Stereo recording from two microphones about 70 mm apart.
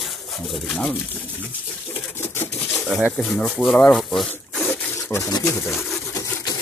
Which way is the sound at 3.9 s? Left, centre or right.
Centre.